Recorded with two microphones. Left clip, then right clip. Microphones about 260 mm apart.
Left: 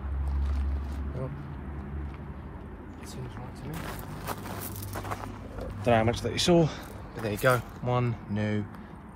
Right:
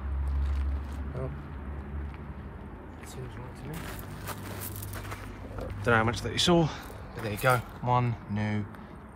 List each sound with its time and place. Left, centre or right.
3.7 s vehicle: centre
5.9 s speech: centre